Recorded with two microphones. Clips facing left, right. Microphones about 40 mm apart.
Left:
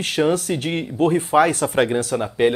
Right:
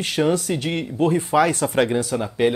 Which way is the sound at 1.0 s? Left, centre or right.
Left.